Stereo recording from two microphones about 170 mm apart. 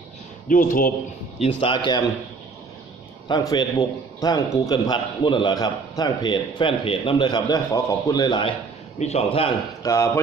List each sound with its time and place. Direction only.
0.5 s a man's voice: 55° left (ahead or behind)
1.4 s a man's voice: 30° left (ahead or behind)
3.3 s a man's voice: 25° left (ahead or behind)
9.0 s a man's voice: 35° left (ahead or behind)
9.8 s speech: 15° left (ahead or behind)